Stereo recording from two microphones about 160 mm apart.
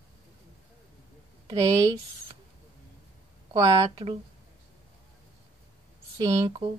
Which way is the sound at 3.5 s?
35° right (ahead or behind).